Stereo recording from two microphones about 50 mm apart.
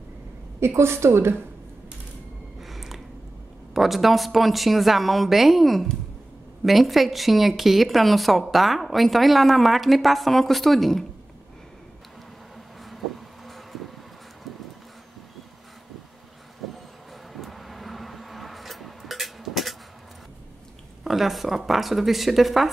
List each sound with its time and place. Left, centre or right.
0.6 s a woman's voice: right
2.6 s a sound: centre
3.7 s a woman's voice: centre
12.9 s insect: centre
17.3 s vehicle: centre
21.0 s a woman's voice: centre